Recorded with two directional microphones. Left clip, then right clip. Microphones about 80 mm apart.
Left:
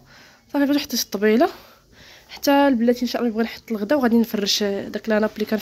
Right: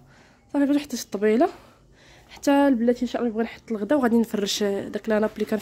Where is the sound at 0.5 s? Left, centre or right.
Centre.